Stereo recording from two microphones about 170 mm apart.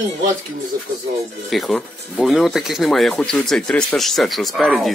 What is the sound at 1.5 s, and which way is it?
Speech, centre (ahead or behind).